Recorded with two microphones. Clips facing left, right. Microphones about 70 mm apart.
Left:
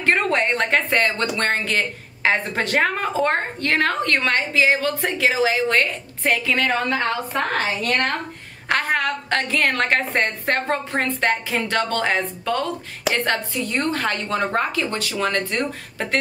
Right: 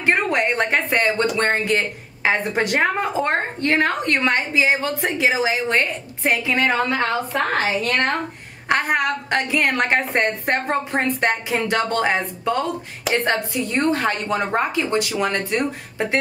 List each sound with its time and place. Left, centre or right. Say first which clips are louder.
0.0 s speech: even; centre
7.8 s speech: right 1 dB; right